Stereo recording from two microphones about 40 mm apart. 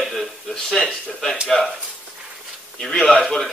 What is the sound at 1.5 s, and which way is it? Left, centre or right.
Speech, centre.